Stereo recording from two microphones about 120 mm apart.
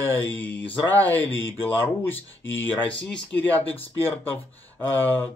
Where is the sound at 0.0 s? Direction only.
15° left (ahead or behind).